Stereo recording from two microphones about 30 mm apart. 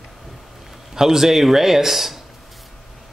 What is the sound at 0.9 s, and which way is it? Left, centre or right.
Speech, centre.